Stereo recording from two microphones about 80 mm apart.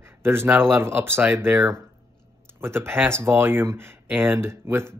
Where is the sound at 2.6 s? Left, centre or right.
Right.